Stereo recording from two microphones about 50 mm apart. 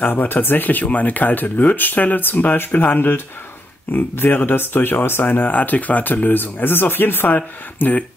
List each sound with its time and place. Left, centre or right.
0.0 s speech: left